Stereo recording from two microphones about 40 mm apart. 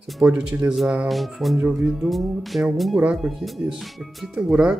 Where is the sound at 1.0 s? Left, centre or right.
Centre.